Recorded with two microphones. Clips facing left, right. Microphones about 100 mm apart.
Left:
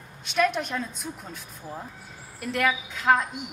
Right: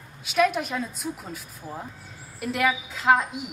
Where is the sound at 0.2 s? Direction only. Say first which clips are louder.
Right 2 dB; 5° right (ahead or behind).